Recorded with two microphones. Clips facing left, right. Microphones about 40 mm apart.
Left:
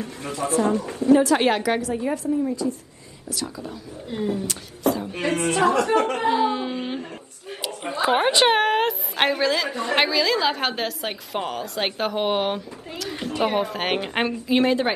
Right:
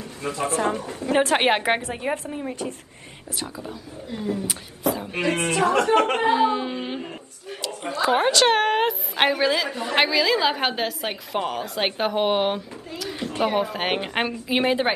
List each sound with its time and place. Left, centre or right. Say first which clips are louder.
0.2 s a woman's voice: left 1 dB; right
5.3 s speech: left 1 dB; right
6.4 s a woman's voice: right 1 dB; centre
7.4 s a woman's voice: even; centre
8.5 s a woman's voice: even; centre
14.5 s a woman's voice: left 1 dB; centre